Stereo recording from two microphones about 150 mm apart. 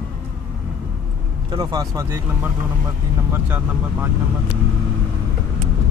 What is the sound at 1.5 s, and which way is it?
Speech, 25° right (ahead or behind).